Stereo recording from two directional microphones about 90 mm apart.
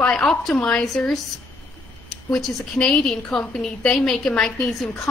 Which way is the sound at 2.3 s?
5° left (ahead or behind).